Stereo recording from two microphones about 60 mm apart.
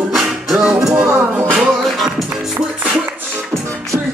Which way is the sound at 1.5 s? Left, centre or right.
Centre.